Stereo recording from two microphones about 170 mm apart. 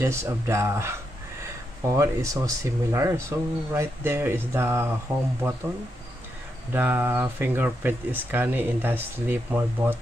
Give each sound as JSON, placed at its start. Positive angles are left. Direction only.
{"t": 0.0, "sound": "speech", "side_deg": -15}
{"t": 6.7, "sound": "speech", "side_deg": -10}